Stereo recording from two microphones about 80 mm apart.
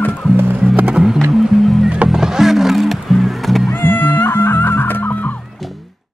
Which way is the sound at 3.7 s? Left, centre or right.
Left.